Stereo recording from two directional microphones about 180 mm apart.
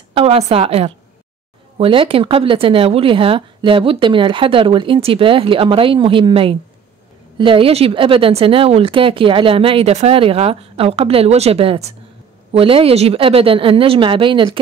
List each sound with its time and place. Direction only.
0.1 s a woman's voice: 30° right (ahead or behind)